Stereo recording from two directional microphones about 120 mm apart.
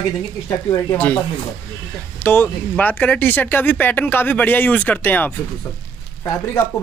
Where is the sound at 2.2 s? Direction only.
15° left (ahead or behind).